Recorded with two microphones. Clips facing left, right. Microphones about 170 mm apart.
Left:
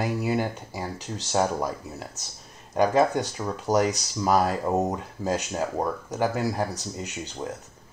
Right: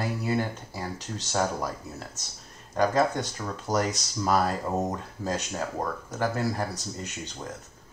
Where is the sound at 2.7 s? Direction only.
15° left (ahead or behind).